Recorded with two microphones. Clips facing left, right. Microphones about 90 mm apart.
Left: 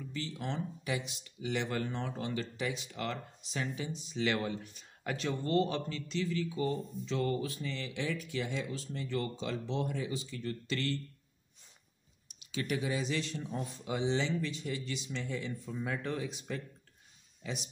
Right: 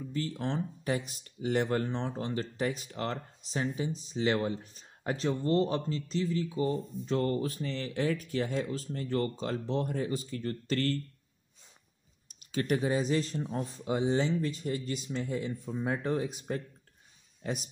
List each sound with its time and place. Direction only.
0.0 s speech: 40° right (ahead or behind)
7.1 s speech: 45° right (ahead or behind)
12.4 s speech: 45° right (ahead or behind)
15.6 s speech: 30° right (ahead or behind)
16.3 s speech: 45° right (ahead or behind)